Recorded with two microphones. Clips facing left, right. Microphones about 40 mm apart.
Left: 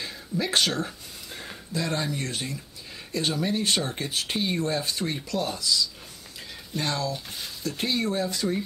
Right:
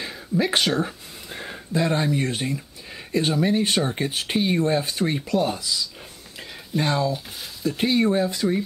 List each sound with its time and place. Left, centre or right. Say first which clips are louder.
0.0 s speech: right 6 dB; centre